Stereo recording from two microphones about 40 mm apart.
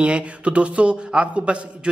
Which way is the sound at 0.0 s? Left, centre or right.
Right.